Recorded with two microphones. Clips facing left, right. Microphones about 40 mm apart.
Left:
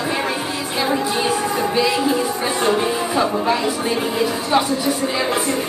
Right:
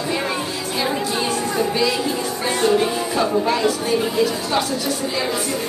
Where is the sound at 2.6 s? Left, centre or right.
Centre.